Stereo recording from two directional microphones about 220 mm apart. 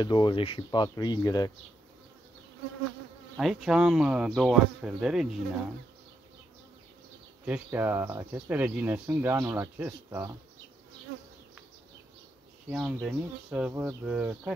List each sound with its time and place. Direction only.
0.0 s speech: 20° left (ahead or behind)
3.3 s speech: centre (ahead or behind)
7.4 s speech: 10° right (ahead or behind)
12.6 s speech: 5° right (ahead or behind)